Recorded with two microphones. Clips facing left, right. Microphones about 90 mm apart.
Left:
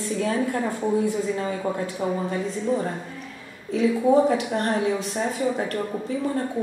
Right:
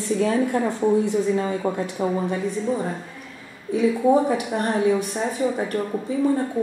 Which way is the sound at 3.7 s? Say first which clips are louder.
Right 1 dB; 15° right (ahead or behind).